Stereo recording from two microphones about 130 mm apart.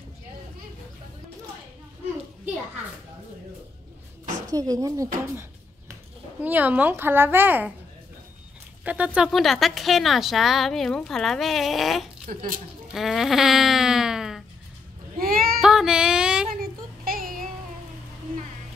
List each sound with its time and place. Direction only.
4.5 s speech: 25° right (ahead or behind)
5.3 s a sound: 20° right (ahead or behind)
6.4 s speech: 15° right (ahead or behind)
8.8 s a woman's voice: 10° right (ahead or behind)
15.1 s child singing: 90° right
15.6 s music: 5° right (ahead or behind)
16.5 s child singing: 90° right